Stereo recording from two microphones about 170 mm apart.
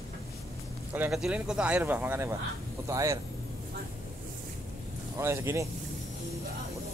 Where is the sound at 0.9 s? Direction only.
5° right (ahead or behind).